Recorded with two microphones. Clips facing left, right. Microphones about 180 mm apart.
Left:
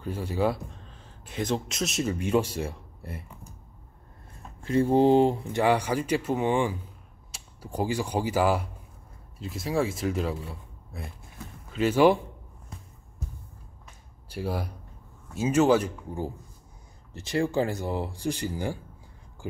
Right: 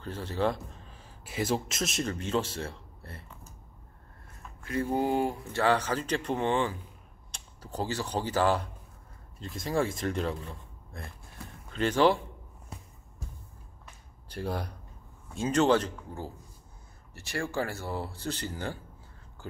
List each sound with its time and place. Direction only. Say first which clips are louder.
0.0 s speech: left 3 dB; 10° left (ahead or behind)
0.8 s a man's voice: left 1 dB; 5° right (ahead or behind)
2.1 s speech: left 5 dB; 10° left (ahead or behind)
4.4 s speech: left 7 dB; 30° left (ahead or behind); by 12.2 s 10° left (ahead or behind)
14.3 s speech: left 2 dB; 10° left (ahead or behind)